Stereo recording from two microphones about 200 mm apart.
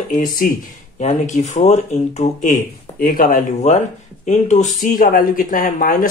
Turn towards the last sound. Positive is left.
turn(degrees=45)  # may be behind; listen again after turning